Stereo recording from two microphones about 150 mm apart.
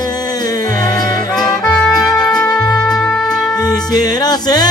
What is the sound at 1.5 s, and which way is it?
Music, 5° left (ahead or behind).